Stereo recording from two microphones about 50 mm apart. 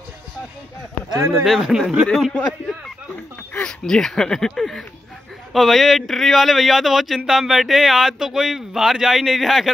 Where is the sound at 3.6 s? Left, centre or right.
Centre.